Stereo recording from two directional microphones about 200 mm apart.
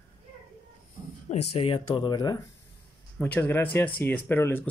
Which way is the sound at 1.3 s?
30° left (ahead or behind).